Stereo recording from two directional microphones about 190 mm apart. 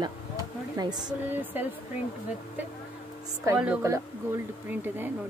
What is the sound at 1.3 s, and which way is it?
Speech, 10° right (ahead or behind).